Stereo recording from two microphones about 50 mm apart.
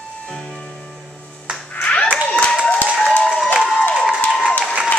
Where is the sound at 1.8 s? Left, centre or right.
Left.